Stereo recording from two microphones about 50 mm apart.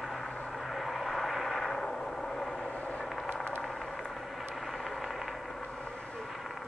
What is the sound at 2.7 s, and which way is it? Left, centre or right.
Vehicle, left.